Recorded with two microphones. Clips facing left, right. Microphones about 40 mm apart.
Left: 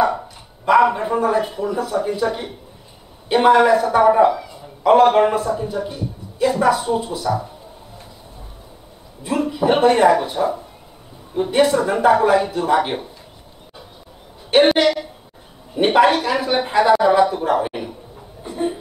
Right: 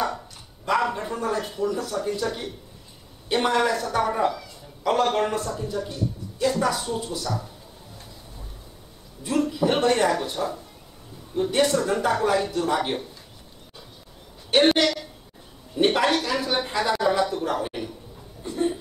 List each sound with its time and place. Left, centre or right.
0.7 s a man's voice: centre
9.2 s a man's voice: centre
14.8 s a man's voice: centre
18.4 s a sound: centre